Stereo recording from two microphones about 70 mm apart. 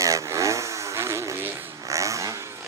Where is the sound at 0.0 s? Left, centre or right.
Right.